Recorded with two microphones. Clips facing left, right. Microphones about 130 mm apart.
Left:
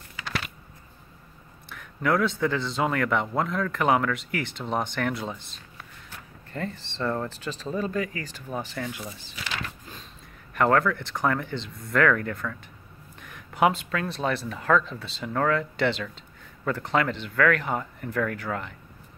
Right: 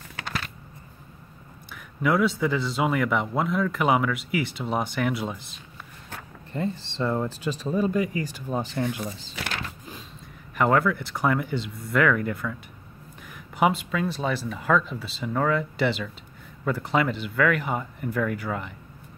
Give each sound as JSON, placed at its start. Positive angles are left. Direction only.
{"t": 0.2, "sound": "a sound", "side_deg": -65}
{"t": 1.7, "sound": "a man's voice", "side_deg": -5}
{"t": 6.5, "sound": "speech", "side_deg": -20}
{"t": 9.0, "sound": "speech", "side_deg": -80}
{"t": 10.5, "sound": "a man's voice", "side_deg": -5}